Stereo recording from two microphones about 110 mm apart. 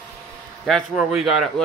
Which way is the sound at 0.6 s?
Centre (ahead or behind).